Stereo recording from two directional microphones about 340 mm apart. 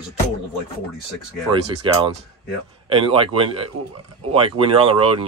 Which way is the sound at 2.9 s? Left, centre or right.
Centre.